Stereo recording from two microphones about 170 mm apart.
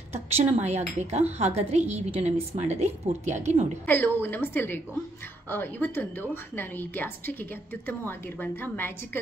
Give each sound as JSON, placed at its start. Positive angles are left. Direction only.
{"t": 0.1, "sound": "speech", "side_deg": -40}
{"t": 3.8, "sound": "a woman's voice", "side_deg": 10}
{"t": 8.4, "sound": "a woman's voice", "side_deg": 10}